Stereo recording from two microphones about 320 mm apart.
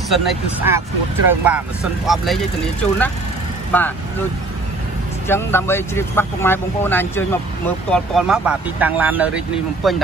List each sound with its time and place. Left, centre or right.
0.1 s speech: centre
5.3 s speech: centre